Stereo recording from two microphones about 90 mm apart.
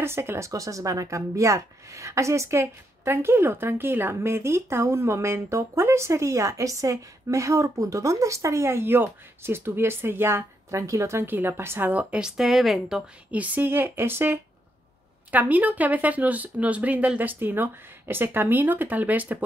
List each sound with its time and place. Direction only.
0.0 s a woman's voice: 30° right (ahead or behind); by 13.0 s centre (ahead or behind)
13.3 s a woman's voice: 20° right (ahead or behind)